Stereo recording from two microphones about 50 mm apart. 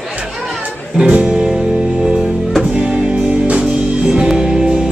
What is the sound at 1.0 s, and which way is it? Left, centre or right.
Music, right.